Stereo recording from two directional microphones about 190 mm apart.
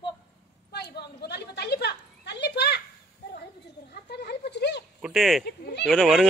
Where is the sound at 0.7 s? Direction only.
60° left (ahead or behind).